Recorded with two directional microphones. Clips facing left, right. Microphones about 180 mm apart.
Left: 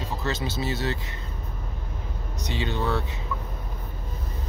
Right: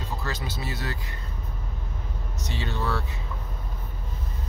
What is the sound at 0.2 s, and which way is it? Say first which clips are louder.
Speech: left 5 dB; 25° left (ahead or behind).